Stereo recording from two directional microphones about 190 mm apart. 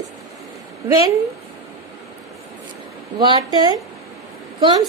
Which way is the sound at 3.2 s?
20° right (ahead or behind).